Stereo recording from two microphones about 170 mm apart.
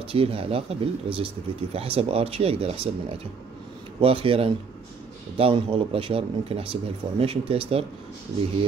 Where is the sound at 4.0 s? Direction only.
35° right (ahead or behind).